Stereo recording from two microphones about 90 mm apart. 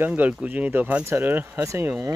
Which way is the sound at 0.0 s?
20° right (ahead or behind).